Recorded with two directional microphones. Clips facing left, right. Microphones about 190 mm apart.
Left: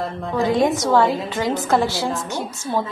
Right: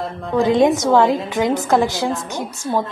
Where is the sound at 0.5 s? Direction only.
20° right (ahead or behind).